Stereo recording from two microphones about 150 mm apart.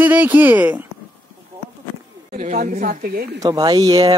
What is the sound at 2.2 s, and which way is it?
A woman's voice, 60° right (ahead or behind).